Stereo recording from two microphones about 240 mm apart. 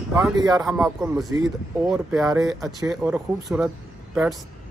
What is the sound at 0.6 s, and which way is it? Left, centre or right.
Speech, centre.